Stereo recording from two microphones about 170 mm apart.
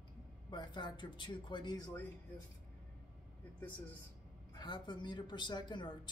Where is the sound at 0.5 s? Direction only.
25° left (ahead or behind).